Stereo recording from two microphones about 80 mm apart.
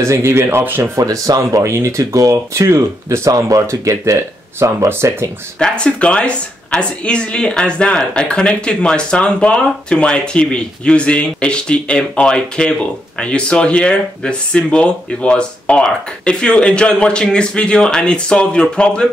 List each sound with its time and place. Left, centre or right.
0.0 s speech: right
1.0 s speech: right
5.6 s speech: centre